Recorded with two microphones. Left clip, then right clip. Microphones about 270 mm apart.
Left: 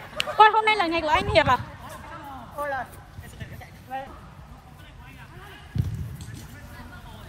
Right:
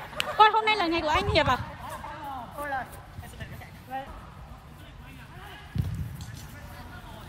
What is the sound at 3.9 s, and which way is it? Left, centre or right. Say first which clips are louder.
Vehicle: left 2 dB; left.